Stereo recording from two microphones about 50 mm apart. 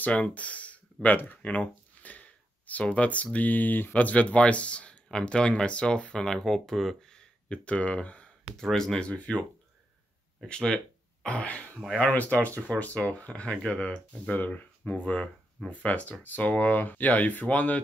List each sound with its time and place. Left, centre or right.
0.0 s speech: left
1.0 s speech: left
6.2 s speech: centre
7.4 s speech: left
8.5 s speech: centre; by 9.5 s left
10.5 s speech: centre
11.2 s speech: left